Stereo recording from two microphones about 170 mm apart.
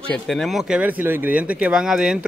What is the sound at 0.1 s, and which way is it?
Speech, centre (ahead or behind).